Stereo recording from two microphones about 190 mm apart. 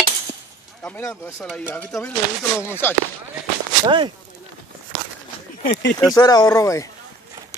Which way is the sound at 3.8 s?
25° right (ahead or behind).